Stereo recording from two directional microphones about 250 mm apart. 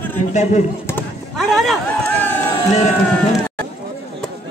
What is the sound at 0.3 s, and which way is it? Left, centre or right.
Speech, left.